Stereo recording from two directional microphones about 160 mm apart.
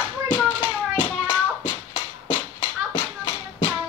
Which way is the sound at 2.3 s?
35° left (ahead or behind).